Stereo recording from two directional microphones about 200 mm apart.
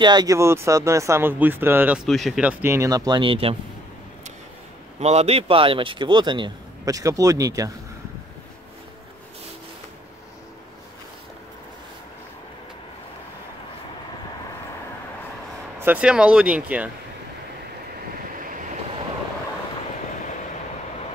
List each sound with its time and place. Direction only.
0.0 s speech: 20° right (ahead or behind)
5.0 s a man's voice: 30° right (ahead or behind); by 7.7 s 15° right (ahead or behind)
15.8 s speech: 5° right (ahead or behind)